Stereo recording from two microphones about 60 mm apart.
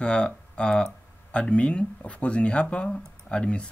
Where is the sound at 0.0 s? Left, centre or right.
Centre.